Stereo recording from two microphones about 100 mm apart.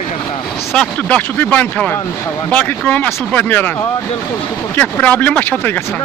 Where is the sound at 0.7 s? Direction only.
10° left (ahead or behind).